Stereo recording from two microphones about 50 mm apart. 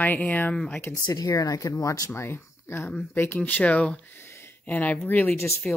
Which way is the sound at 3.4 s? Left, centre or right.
Left.